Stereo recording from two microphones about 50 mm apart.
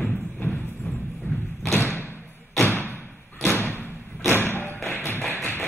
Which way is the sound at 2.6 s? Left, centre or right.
Left.